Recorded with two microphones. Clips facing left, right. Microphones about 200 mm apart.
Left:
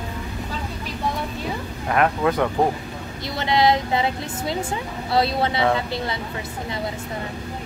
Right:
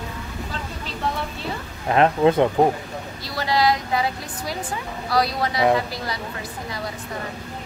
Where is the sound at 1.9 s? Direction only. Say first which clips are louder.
Right 3 dB; 25° right (ahead or behind).